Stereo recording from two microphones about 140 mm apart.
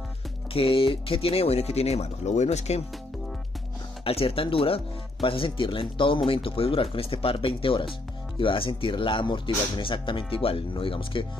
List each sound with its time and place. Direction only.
0.5 s speech: 40° left (ahead or behind)
4.0 s speech: 45° left (ahead or behind)